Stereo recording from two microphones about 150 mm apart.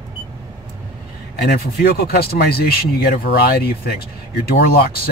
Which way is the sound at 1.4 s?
90° left.